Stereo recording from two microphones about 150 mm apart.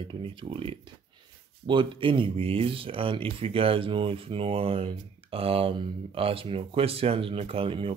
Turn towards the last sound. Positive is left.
turn(degrees=-35)  # may be behind; listen again after turning